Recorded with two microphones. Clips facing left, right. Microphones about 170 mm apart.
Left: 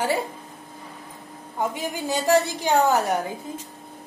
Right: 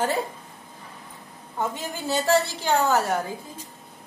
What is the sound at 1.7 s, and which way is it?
Speech, 15° left (ahead or behind).